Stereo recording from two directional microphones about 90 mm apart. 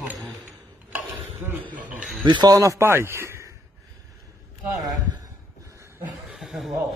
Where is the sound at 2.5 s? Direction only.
35° right (ahead or behind).